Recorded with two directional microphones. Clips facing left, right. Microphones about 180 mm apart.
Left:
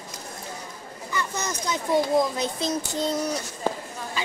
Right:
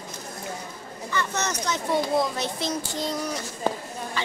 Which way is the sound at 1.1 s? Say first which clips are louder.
Right 2 dB; 10° left (ahead or behind).